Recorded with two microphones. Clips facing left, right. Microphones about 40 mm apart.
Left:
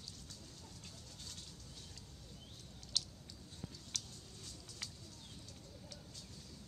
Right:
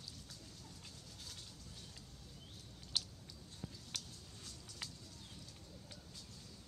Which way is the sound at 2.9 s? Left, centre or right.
Centre.